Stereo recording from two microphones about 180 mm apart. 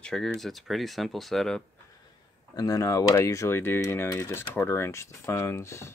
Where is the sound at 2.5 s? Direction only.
20° left (ahead or behind).